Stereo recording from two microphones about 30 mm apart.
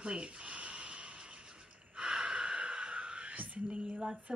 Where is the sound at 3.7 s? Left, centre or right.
Right.